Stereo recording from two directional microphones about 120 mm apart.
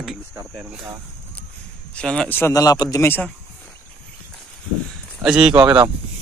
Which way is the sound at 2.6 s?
30° left (ahead or behind).